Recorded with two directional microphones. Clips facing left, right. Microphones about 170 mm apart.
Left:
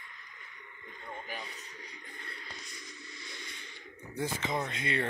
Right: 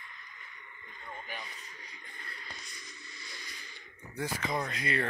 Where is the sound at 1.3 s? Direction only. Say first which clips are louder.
Left 2 dB; 30° left (ahead or behind).